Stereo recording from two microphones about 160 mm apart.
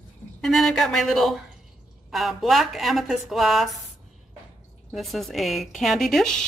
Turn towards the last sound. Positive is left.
turn(degrees=0)  # may be behind; listen again after turning